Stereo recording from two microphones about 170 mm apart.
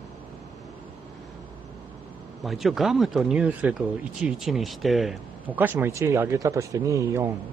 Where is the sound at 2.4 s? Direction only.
Centre (ahead or behind).